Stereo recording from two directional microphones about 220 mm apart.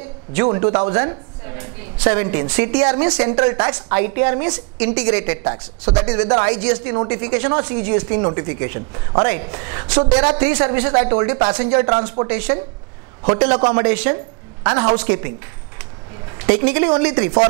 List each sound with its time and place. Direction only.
0.3 s a woman's voice: 15° right (ahead or behind)
2.9 s a woman's voice: 20° right (ahead or behind)
12.3 s speech: 10° right (ahead or behind)
13.5 s a woman's voice: 20° right (ahead or behind)
15.0 s speech: 15° right (ahead or behind)
16.4 s speech: 15° right (ahead or behind)